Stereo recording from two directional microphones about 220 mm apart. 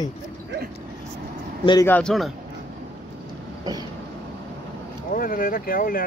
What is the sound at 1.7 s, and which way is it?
Speech, 15° left (ahead or behind).